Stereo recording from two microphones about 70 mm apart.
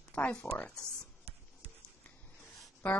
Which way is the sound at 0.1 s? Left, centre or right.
Centre.